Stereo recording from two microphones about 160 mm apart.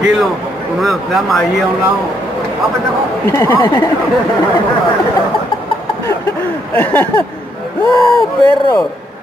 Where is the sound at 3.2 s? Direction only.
15° left (ahead or behind).